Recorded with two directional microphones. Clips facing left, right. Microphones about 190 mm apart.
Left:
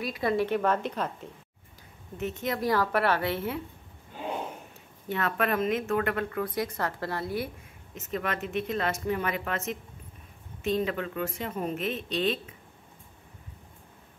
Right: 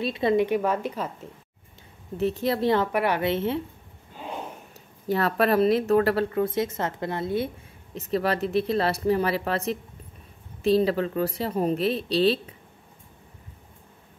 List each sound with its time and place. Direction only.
0.0 s a woman's voice: 25° right (ahead or behind)
0.6 s speech: 10° right (ahead or behind)
2.1 s a woman's voice: 35° right (ahead or behind)
5.0 s speech: 35° right (ahead or behind)